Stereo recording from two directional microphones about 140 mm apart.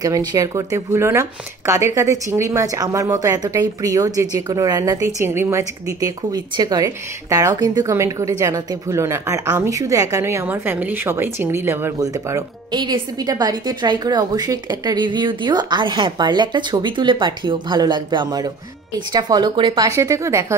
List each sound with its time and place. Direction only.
0.0 s a woman's voice: 25° right (ahead or behind)